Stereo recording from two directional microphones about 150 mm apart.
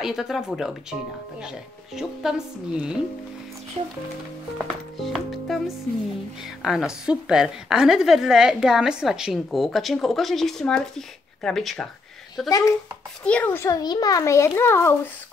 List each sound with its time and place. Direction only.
0.0 s a woman's voice: centre (ahead or behind)
2.0 s a woman's voice: 5° right (ahead or behind)
4.9 s a woman's voice: centre (ahead or behind)
12.4 s a child's voice: 20° left (ahead or behind)
13.2 s a child's voice: 10° left (ahead or behind)
13.7 s a child's voice: 25° left (ahead or behind)